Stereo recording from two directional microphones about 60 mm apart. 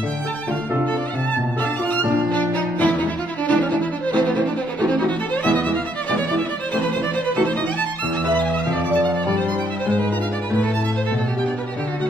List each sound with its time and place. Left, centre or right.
2.3 s music: left
4.9 s violin: left